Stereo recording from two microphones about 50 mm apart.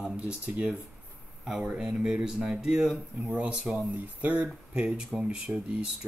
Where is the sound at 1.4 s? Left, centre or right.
Centre.